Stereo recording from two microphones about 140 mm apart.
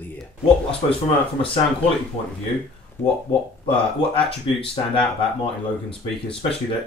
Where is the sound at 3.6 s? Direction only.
40° left (ahead or behind).